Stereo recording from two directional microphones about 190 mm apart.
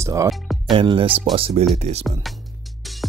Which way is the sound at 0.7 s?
25° right (ahead or behind).